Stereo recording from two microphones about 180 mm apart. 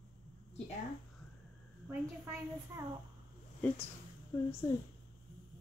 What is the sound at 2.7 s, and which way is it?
Speech, 15° right (ahead or behind).